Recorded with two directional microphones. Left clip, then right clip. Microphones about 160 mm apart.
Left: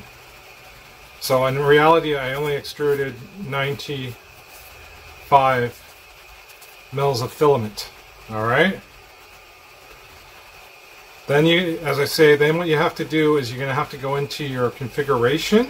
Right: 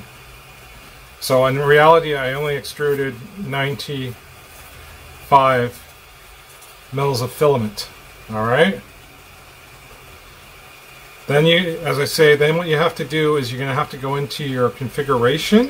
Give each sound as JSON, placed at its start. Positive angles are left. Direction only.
{"t": 1.2, "sound": "speech", "side_deg": 10}
{"t": 5.3, "sound": "speech", "side_deg": 15}
{"t": 7.0, "sound": "speech", "side_deg": 15}
{"t": 11.2, "sound": "speech", "side_deg": 15}